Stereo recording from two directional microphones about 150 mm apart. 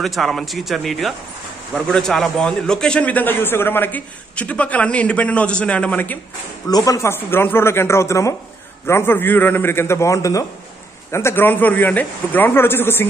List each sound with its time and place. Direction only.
0.0 s a man's voice: centre (ahead or behind)
6.7 s a man's voice: 25° left (ahead or behind)